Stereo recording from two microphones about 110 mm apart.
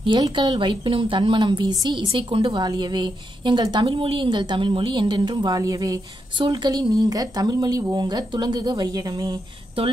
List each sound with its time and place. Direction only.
0.2 s a woman's voice: 40° right (ahead or behind)
3.8 s a woman's voice: 55° right (ahead or behind); by 9.4 s 35° right (ahead or behind)